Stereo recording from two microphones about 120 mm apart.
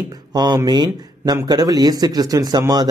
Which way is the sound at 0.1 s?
35° right (ahead or behind).